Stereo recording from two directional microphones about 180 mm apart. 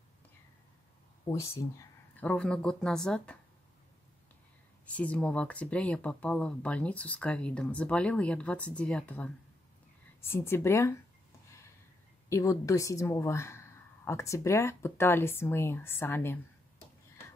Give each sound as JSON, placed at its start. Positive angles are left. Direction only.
{"t": 1.3, "sound": "speech", "side_deg": 15}
{"t": 4.9, "sound": "speech", "side_deg": 5}
{"t": 12.3, "sound": "speech", "side_deg": 15}